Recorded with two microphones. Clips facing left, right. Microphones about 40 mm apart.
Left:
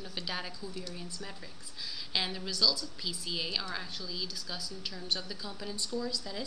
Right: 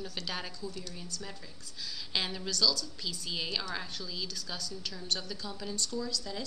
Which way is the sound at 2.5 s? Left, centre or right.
Centre.